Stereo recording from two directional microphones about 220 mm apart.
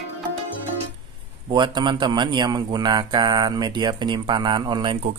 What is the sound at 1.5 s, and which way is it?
A man's voice, 20° right (ahead or behind).